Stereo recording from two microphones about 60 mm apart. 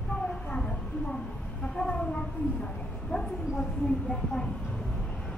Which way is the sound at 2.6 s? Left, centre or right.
Centre.